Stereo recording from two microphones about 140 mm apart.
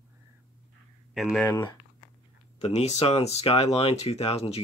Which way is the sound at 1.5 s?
20° left (ahead or behind).